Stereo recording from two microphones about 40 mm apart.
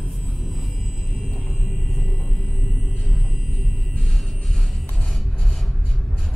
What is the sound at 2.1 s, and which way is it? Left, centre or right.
Music, left.